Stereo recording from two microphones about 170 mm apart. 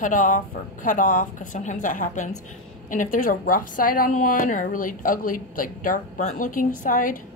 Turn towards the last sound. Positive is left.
turn(degrees=50)  # may be behind; listen again after turning